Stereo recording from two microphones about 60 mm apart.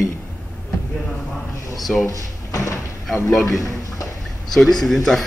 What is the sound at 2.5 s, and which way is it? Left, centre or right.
Door, left.